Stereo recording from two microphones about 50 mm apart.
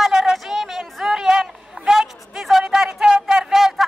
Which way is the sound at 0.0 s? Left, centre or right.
Centre.